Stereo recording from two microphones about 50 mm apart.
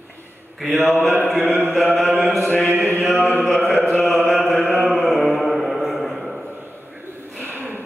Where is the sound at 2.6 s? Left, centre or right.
Right.